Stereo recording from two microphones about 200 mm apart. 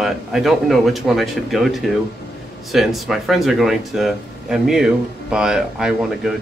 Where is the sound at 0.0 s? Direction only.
Centre (ahead or behind).